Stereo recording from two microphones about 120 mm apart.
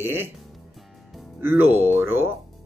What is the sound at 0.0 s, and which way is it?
Speech, 20° right (ahead or behind).